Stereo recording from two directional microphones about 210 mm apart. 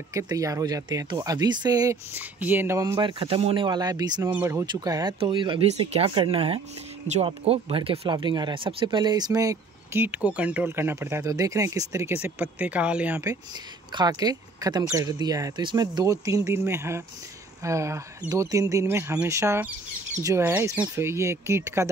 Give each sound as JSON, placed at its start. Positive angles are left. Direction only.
{"t": 0.1, "sound": "speech", "side_deg": -15}